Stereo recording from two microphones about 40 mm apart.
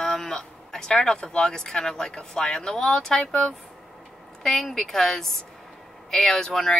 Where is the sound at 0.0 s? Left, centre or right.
Centre.